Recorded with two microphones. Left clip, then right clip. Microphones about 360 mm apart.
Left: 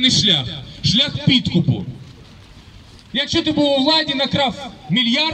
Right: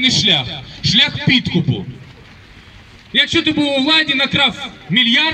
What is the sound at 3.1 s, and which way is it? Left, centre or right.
A man's voice, left.